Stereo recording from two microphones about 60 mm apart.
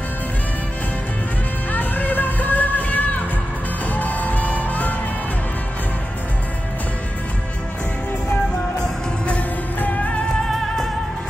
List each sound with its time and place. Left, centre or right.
1.7 s music: left
9.3 s music: left